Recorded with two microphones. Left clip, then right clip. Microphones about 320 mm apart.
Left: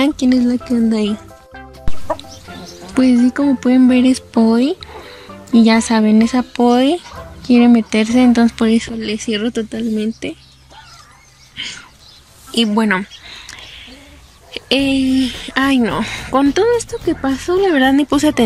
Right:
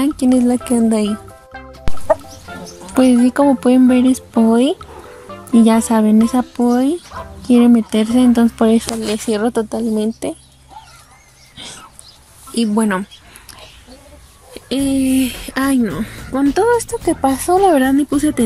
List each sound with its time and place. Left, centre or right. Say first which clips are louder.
0.0 s music: even; centre
2.9 s speech: right 1 dB; centre
9.3 s speech: right 4 dB; right
12.5 s speech: left 2 dB; centre
14.5 s speech: left 3 dB; centre
17.2 s speech: right 3 dB; centre
17.6 s speech: even; centre